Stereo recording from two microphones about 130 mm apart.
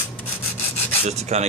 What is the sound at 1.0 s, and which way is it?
Rub, 55° right (ahead or behind).